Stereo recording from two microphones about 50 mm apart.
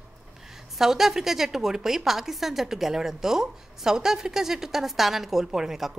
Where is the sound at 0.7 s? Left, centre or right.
Centre.